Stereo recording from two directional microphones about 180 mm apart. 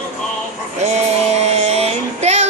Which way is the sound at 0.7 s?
40° right (ahead or behind).